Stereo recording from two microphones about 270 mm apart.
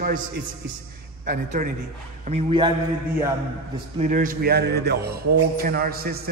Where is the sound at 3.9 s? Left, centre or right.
Right.